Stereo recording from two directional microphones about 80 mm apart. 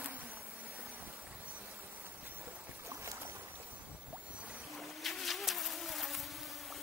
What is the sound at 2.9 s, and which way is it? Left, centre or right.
Boat, right.